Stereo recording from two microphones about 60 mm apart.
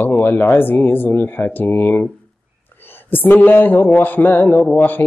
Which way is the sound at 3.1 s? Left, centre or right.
Left.